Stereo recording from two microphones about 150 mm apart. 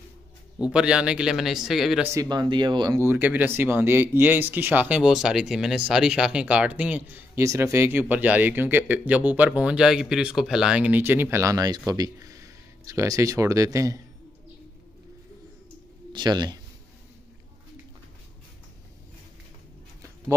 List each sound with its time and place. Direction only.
0.6 s speech: 5° right (ahead or behind)
2.1 s speech: 30° right (ahead or behind)
16.1 s speech: 30° right (ahead or behind)